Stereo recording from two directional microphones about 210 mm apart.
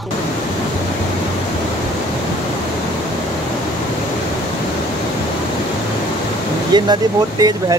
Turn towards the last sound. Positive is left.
turn(degrees=-20)  # may be behind; listen again after turning